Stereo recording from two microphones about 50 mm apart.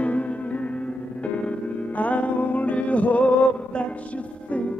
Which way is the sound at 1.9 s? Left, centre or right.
Left.